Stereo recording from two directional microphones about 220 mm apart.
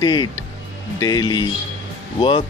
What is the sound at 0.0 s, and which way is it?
Speech, 20° left (ahead or behind).